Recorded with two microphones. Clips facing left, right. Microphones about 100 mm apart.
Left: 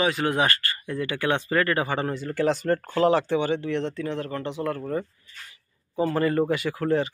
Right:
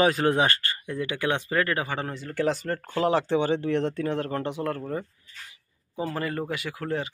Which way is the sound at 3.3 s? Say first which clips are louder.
Right 1 dB; 35° right (ahead or behind).